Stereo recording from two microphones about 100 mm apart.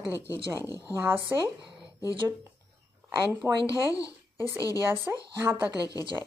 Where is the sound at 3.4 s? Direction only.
25° right (ahead or behind).